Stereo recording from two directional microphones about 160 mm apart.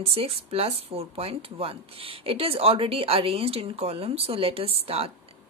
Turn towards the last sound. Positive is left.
turn(degrees=-40)  # may be behind; listen again after turning